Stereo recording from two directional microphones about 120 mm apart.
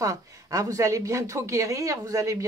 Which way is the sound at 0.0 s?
30° right (ahead or behind).